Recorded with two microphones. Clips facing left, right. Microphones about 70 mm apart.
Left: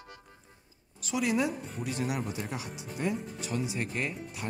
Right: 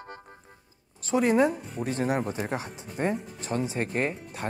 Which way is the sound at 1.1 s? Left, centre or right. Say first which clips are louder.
Right 7 dB; right.